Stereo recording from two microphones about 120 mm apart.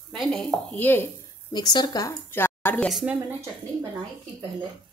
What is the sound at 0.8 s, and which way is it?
Speech, 15° left (ahead or behind).